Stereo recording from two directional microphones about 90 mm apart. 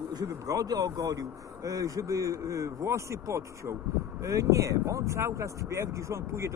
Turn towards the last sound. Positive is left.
turn(degrees=-35)  # may be behind; listen again after turning